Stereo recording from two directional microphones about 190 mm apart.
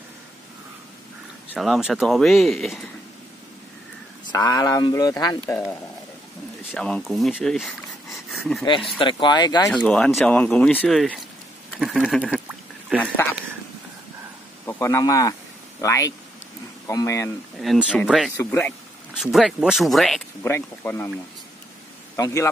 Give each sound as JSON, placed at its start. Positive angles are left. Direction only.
{"t": 1.5, "sound": "speech", "side_deg": 0}
{"t": 4.3, "sound": "speech", "side_deg": 20}
{"t": 6.7, "sound": "speech", "side_deg": 0}
{"t": 8.3, "sound": "a sound", "side_deg": 0}
{"t": 8.6, "sound": "speech", "side_deg": 25}
{"t": 9.7, "sound": "speech", "side_deg": 5}
{"t": 11.8, "sound": "a sound", "side_deg": 0}
{"t": 14.7, "sound": "speech", "side_deg": 15}
{"t": 17.6, "sound": "speech", "side_deg": 0}
{"t": 18.3, "sound": "speech", "side_deg": 15}
{"t": 19.1, "sound": "speech", "side_deg": 0}
{"t": 20.4, "sound": "speech", "side_deg": 10}
{"t": 22.1, "sound": "a man's voice", "side_deg": 15}